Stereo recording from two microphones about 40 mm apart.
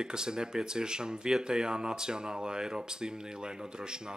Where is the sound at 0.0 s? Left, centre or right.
Centre.